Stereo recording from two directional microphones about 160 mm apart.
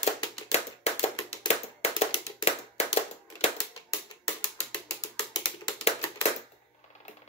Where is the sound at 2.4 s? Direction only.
45° left (ahead or behind).